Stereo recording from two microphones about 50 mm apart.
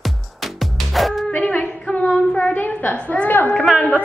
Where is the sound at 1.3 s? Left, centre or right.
Left.